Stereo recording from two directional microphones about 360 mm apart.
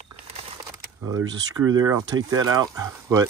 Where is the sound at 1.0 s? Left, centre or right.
Centre.